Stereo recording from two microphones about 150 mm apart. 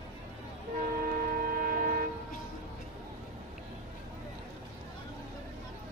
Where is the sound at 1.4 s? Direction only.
80° right.